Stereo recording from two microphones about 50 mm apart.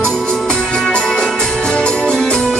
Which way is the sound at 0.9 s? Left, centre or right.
Centre.